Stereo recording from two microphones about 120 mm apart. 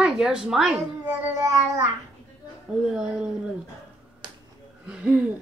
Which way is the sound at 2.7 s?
5° right (ahead or behind).